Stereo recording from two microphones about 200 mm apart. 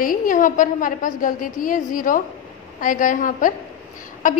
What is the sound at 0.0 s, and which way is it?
A woman's voice, 45° left (ahead or behind).